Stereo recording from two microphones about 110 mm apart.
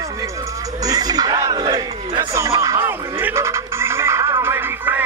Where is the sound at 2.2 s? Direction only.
25° right (ahead or behind).